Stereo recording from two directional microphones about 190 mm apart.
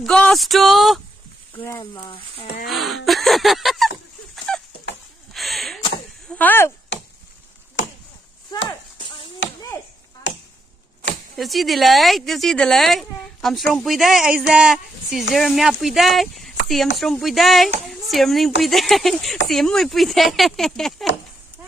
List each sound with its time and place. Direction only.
0.0 s a woman's voice: 5° left (ahead or behind)
1.8 s speech: 25° left (ahead or behind)
2.6 s a sound: centre (ahead or behind)
7.8 s a sound: 80° left
8.6 s clip-clop: 25° left (ahead or behind)
10.3 s chop: 70° left (ahead or behind)
11.3 s a woman's voice: centre (ahead or behind)